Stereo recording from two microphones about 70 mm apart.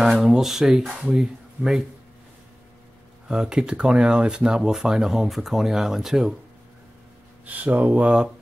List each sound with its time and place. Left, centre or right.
0.0 s speech: centre
3.3 s speech: centre
7.4 s speech: right